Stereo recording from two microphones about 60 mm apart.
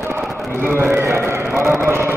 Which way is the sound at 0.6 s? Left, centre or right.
Right.